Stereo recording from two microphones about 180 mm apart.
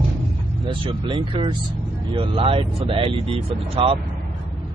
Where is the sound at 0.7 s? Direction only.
25° right (ahead or behind).